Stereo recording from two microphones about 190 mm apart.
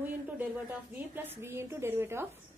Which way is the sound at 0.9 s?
10° right (ahead or behind).